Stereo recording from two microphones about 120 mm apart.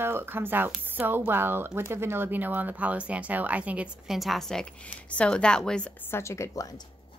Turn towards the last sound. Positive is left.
turn(degrees=25)  # may be behind; listen again after turning